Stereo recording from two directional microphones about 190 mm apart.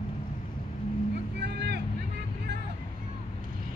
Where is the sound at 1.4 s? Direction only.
65° right (ahead or behind).